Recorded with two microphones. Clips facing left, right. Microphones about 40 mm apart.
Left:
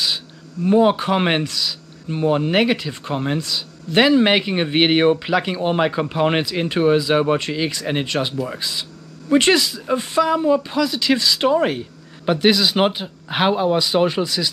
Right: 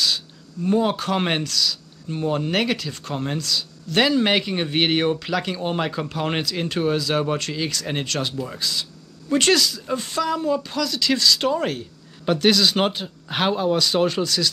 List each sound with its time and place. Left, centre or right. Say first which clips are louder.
0.7 s speech: left 5 dB; centre